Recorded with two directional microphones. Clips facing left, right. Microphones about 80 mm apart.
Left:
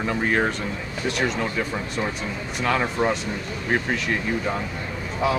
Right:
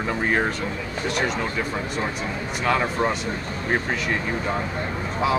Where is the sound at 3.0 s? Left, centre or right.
Right.